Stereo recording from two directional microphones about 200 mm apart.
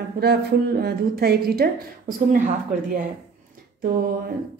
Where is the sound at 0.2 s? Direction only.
55° right (ahead or behind).